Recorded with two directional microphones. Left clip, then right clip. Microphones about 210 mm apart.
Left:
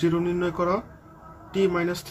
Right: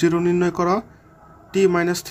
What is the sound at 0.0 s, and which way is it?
Speech, 50° right (ahead or behind).